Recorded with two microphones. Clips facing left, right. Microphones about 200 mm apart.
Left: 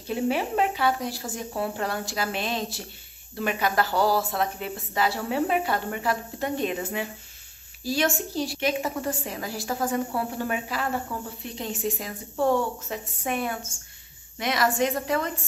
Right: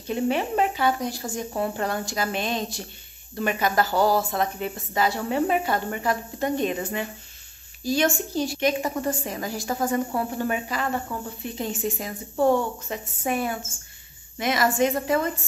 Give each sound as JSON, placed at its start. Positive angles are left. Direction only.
{"t": 0.0, "sound": "a woman's voice", "side_deg": 5}